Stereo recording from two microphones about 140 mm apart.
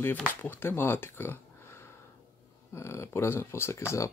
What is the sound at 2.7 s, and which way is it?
Speech, 20° left (ahead or behind).